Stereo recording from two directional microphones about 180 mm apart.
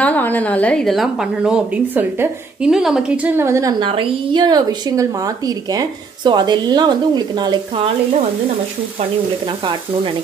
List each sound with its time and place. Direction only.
0.0 s a woman's voice: 10° left (ahead or behind); by 3.7 s 15° right (ahead or behind)
3.8 s a woman's voice: 30° right (ahead or behind)